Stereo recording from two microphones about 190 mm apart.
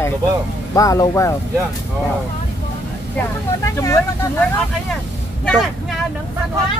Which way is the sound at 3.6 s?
15° left (ahead or behind).